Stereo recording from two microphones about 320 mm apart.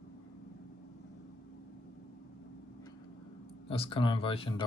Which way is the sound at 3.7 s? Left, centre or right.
Centre.